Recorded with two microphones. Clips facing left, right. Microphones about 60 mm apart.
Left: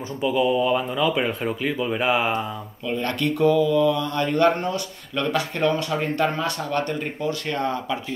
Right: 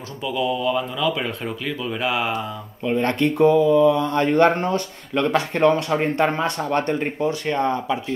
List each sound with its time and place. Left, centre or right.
0.2 s speech: centre
2.8 s speech: right